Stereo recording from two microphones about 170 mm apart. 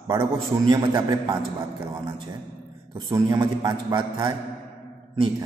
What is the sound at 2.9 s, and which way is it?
A man's voice, 25° right (ahead or behind).